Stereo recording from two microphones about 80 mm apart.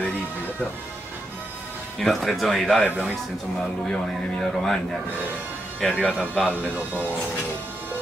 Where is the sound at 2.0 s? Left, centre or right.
Centre.